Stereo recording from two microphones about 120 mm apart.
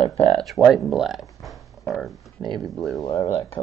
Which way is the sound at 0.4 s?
Centre (ahead or behind).